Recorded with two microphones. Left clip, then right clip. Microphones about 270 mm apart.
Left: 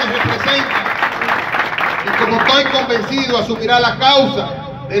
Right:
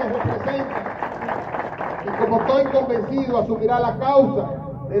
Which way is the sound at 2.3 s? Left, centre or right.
Left.